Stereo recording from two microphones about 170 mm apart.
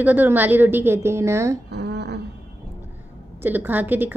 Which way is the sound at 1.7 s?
80° right.